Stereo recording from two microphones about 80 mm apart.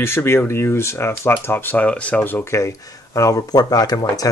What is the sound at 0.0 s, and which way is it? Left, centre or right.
Speech, left.